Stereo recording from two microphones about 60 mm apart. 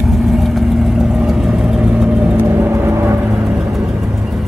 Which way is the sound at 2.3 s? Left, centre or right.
Right.